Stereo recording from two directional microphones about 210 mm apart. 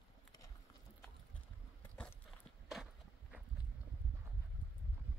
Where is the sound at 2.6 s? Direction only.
Centre (ahead or behind).